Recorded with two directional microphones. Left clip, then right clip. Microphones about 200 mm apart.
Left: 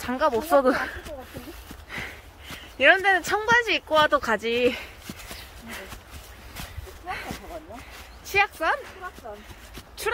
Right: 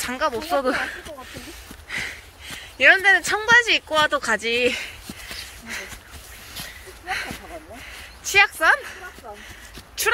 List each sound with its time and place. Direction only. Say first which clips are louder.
0.0 s speech: even; 20° left (ahead or behind)
1.9 s sniff: right 6 dB; 15° left (ahead or behind)
2.8 s speech: right 4 dB; 20° left (ahead or behind)
3.4 s speech: right 6 dB; 10° left (ahead or behind)
7.1 s a sound: right 6 dB; 5° left (ahead or behind)
8.2 s speech: right 6 dB; centre (ahead or behind)
10.0 s a sound: right 6 dB; 5° left (ahead or behind)